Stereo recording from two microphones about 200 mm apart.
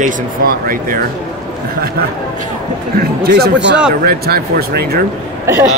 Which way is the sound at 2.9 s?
50° right (ahead or behind).